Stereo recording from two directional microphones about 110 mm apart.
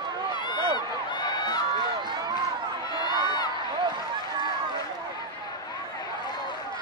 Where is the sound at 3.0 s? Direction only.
40° left (ahead or behind).